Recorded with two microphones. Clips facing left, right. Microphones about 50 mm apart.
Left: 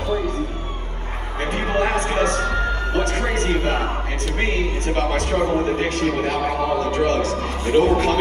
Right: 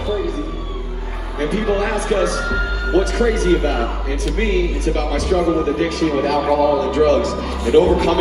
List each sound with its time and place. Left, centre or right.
1.4 s speech: left
6.5 s speech: left
7.1 s speech: left